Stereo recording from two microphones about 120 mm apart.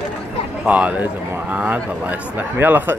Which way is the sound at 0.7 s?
10° right (ahead or behind).